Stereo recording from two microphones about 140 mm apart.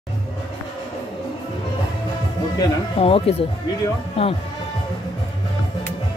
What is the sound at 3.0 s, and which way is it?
Speech, 45° left (ahead or behind).